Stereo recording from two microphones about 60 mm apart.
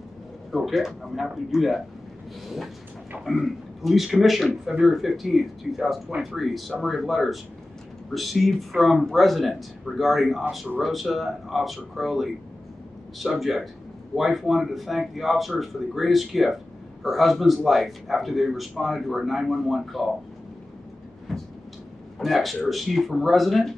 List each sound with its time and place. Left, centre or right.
0.5 s a man's voice: centre
22.2 s a man's voice: centre